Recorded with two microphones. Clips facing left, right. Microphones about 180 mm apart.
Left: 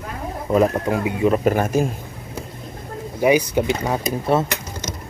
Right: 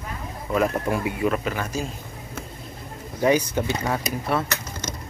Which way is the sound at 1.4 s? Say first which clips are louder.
Left 10 dB; 50° left (ahead or behind).